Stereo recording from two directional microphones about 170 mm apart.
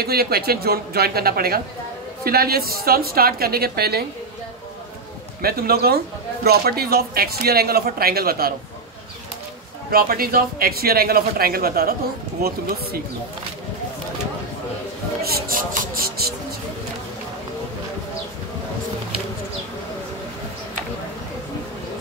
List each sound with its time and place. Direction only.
0.0 s speech: 65° right (ahead or behind)
5.4 s speech: 65° right (ahead or behind)
9.8 s speech: 60° right (ahead or behind)
15.2 s speech: 60° right (ahead or behind)